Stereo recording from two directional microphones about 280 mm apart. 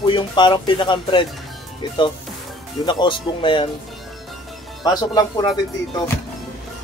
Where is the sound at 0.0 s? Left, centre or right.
Centre.